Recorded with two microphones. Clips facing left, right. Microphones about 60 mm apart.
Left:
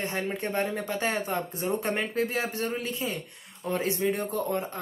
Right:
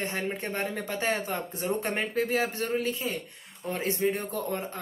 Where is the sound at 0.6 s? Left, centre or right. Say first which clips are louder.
Left 4 dB; left.